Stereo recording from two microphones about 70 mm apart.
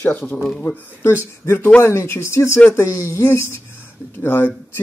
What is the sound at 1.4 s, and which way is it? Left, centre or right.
Speech, left.